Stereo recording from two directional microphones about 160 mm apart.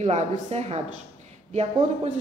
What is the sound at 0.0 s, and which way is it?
A woman's voice, 40° right (ahead or behind).